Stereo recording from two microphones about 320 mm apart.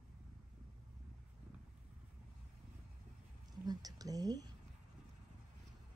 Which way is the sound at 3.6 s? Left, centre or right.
Centre.